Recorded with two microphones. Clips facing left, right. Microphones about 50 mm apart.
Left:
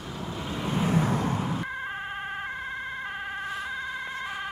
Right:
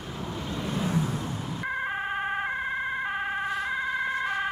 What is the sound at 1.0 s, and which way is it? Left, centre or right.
Vehicle, left.